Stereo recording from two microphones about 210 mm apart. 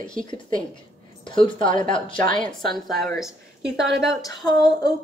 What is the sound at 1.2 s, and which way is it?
Speech, 25° left (ahead or behind).